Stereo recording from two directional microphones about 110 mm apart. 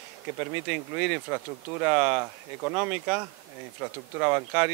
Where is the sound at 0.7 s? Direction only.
15° right (ahead or behind).